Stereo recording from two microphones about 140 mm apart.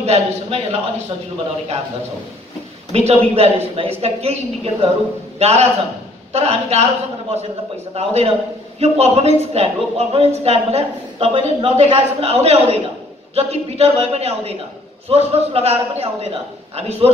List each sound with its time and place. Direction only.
0.0 s a woman's voice: 50° right (ahead or behind)
2.9 s a woman's voice: 45° right (ahead or behind)